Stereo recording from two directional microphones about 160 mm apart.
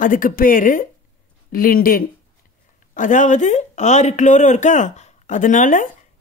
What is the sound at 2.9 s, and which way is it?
Speech, 55° left (ahead or behind).